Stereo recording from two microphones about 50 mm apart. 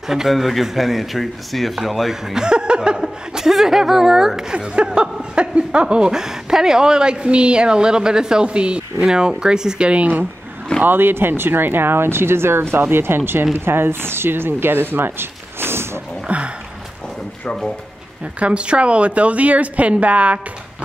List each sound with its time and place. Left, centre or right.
0.1 s speech: centre
10.8 s speech: right
16.3 s a sound: right
18.2 s a woman's voice: right